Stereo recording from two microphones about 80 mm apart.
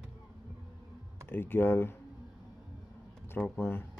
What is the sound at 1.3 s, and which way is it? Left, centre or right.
Speech, left.